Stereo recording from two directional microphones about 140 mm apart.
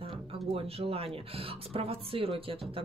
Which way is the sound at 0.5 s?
45° right (ahead or behind).